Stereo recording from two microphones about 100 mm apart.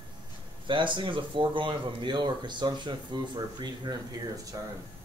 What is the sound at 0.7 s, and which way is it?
Speech, 55° right (ahead or behind).